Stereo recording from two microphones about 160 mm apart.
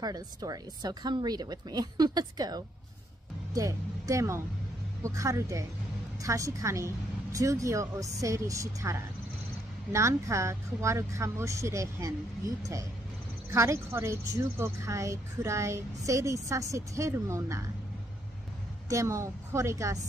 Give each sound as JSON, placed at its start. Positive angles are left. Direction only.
{"t": 0.0, "sound": "speech", "side_deg": -25}
{"t": 9.9, "sound": "speech", "side_deg": -20}
{"t": 18.9, "sound": "speech", "side_deg": -20}